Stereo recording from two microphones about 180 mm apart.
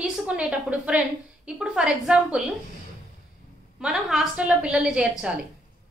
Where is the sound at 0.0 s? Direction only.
5° right (ahead or behind).